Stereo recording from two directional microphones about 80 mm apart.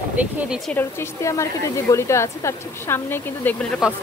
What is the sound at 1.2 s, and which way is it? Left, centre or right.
Speech, left.